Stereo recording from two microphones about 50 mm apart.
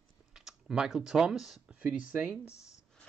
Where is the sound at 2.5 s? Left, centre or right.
Left.